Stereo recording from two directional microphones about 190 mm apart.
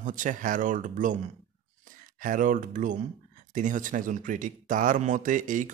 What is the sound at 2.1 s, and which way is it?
Speech, 45° right (ahead or behind).